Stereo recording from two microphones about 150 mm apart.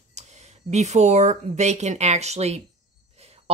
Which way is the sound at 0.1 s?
50° right (ahead or behind).